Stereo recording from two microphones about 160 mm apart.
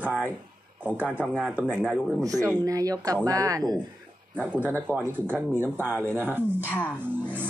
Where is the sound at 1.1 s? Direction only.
Centre (ahead or behind).